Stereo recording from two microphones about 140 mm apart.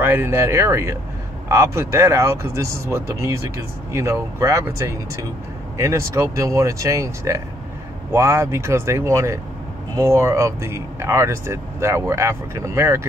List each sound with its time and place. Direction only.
0.0 s speech: 15° right (ahead or behind)